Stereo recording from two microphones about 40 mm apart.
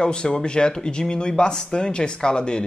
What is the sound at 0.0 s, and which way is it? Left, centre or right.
Speech, left.